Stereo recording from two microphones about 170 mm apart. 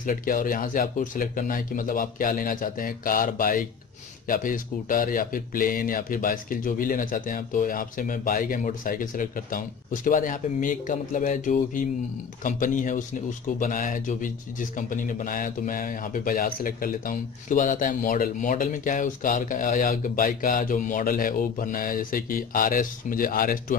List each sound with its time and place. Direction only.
0.0 s speech: 55° left (ahead or behind)